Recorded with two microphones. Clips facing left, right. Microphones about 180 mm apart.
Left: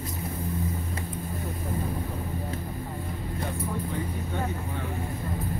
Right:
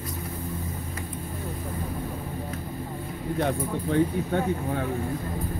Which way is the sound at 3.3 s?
75° right (ahead or behind).